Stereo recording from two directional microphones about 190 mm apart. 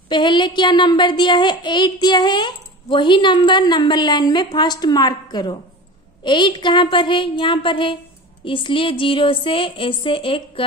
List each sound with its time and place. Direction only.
0.1 s a child's voice: 25° left (ahead or behind)